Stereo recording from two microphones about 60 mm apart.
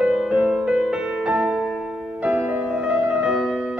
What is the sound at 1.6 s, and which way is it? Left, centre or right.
Music, centre.